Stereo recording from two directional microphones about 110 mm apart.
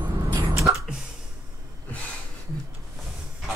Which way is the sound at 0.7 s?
35° right (ahead or behind).